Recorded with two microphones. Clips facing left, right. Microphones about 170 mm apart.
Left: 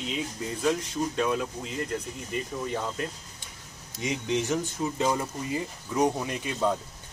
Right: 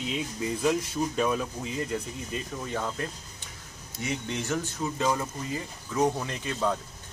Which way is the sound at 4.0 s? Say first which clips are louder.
Left 4 dB; 15° left (ahead or behind).